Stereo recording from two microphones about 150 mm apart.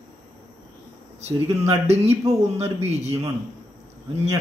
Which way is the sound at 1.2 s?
45° right (ahead or behind).